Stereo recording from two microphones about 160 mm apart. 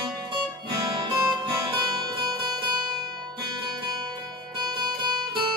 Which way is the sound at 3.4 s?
25° right (ahead or behind).